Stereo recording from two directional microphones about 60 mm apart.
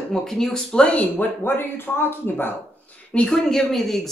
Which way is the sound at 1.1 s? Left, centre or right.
Left.